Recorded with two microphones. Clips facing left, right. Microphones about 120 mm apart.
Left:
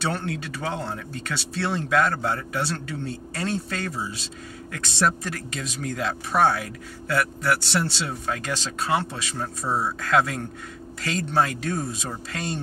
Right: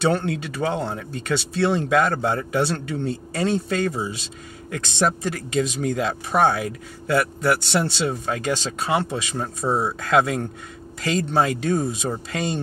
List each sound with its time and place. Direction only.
0.1 s speech: 20° right (ahead or behind)